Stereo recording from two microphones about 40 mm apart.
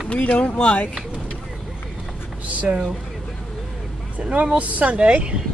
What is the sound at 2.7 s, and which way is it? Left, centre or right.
Speech, right.